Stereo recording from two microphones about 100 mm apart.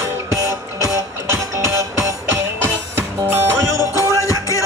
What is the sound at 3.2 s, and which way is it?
Music, 25° right (ahead or behind).